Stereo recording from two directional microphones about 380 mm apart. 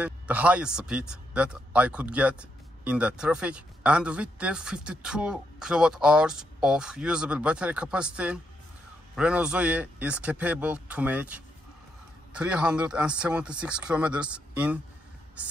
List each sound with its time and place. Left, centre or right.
0.0 s speech: centre